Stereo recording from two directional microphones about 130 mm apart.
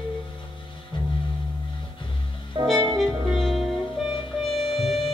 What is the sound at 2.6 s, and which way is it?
Music, 35° right (ahead or behind).